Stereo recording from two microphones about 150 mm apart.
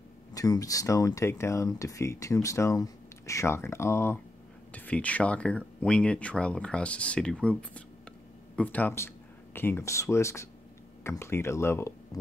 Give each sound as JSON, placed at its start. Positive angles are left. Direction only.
{"t": 0.3, "sound": "speech", "side_deg": 25}